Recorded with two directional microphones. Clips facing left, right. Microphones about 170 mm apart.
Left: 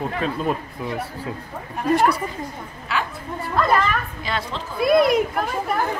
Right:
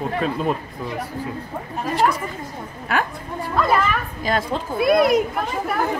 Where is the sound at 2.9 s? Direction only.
50° right (ahead or behind).